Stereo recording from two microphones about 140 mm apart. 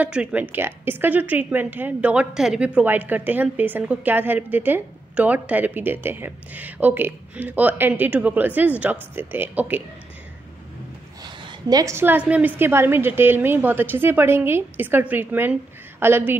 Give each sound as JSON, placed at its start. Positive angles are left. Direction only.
{"t": 0.0, "sound": "a woman's voice", "side_deg": -10}
{"t": 11.2, "sound": "a woman's voice", "side_deg": -30}